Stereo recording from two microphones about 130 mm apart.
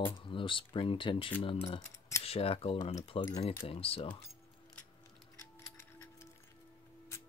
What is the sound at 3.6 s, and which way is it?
Cutlery, 45° left (ahead or behind).